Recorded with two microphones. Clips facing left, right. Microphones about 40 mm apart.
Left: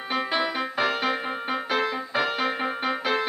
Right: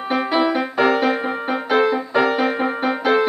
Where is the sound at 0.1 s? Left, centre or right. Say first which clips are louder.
Right 7 dB; centre.